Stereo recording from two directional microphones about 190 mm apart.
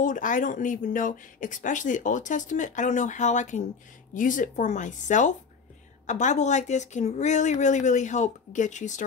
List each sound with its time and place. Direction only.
0.0 s speech: 45° left (ahead or behind)